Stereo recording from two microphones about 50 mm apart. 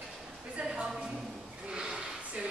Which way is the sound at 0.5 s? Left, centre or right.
Centre.